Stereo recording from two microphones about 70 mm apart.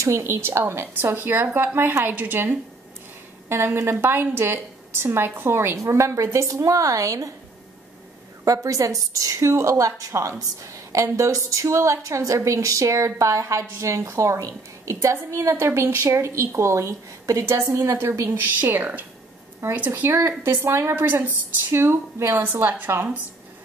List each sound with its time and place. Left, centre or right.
0.0 s a woman's voice: right
8.5 s a woman's voice: right
18.4 s a woman's voice: right